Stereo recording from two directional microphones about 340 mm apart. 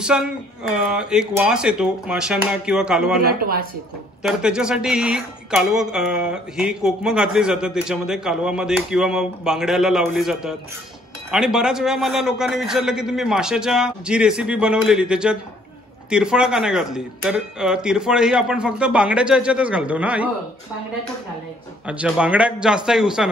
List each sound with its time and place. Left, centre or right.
0.0 s speech: centre
3.2 s speech: right
4.2 s speech: centre
21.8 s speech: centre